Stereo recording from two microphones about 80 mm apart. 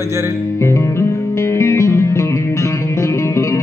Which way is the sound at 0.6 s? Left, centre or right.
Left.